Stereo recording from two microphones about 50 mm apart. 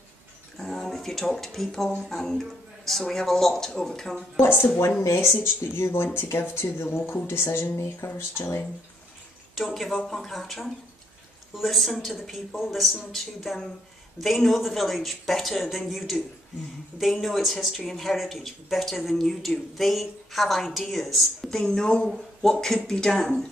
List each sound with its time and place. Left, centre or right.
0.6 s speech: centre
4.4 s speech: left
5.0 s speech: left
9.6 s speech: centre